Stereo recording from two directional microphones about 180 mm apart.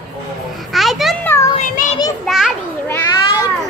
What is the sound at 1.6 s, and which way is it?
Child singing, 45° left (ahead or behind).